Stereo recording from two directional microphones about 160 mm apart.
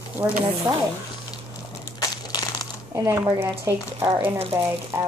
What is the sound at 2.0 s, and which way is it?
Crushing, 25° left (ahead or behind).